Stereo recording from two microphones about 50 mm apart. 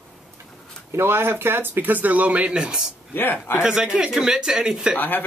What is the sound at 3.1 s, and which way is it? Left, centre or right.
Speech, left.